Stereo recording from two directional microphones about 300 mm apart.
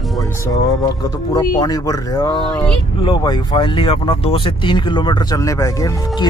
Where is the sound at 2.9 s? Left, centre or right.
Centre.